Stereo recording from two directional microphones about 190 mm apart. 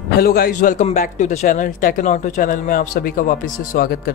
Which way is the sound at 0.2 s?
55° left (ahead or behind).